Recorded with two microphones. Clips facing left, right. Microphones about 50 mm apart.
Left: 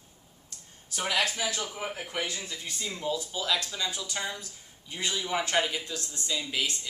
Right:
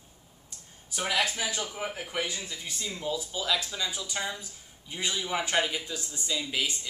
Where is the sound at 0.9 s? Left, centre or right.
Centre.